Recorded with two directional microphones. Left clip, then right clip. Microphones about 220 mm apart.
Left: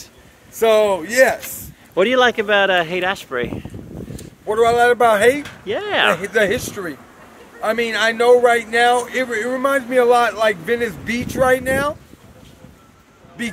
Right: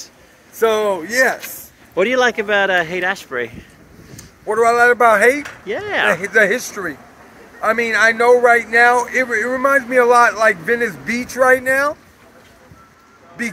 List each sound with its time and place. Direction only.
0.6 s speech: 55° left (ahead or behind)
2.0 s a man's voice: 10° left (ahead or behind)